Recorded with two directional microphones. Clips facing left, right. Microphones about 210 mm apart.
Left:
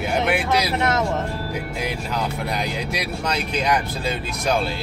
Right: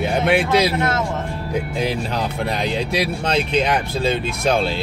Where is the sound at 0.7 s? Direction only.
20° left (ahead or behind).